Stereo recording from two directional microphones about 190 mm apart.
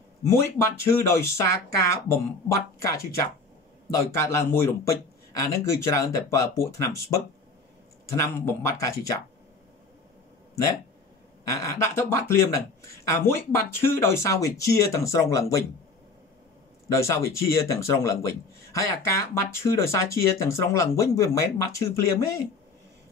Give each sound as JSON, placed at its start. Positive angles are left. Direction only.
{"t": 0.3, "sound": "speech", "side_deg": 15}
{"t": 11.6, "sound": "speech", "side_deg": 15}
{"t": 16.9, "sound": "speech", "side_deg": 15}